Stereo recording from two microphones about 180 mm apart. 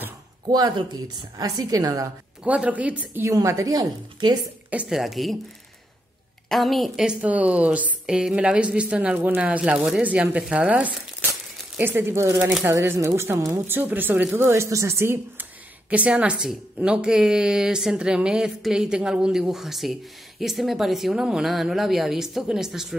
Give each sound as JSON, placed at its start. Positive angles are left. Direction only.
{"t": 0.5, "sound": "a woman's voice", "side_deg": -20}
{"t": 2.4, "sound": "a woman's voice", "side_deg": -10}
{"t": 4.6, "sound": "a woman's voice", "side_deg": -5}
{"t": 6.5, "sound": "a woman's voice", "side_deg": 0}